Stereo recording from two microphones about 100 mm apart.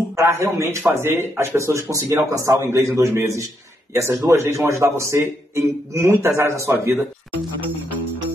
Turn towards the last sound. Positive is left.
turn(degrees=-25)  # may be behind; listen again after turning